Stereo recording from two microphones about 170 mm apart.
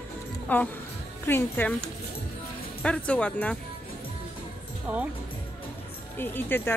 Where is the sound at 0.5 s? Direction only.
10° left (ahead or behind).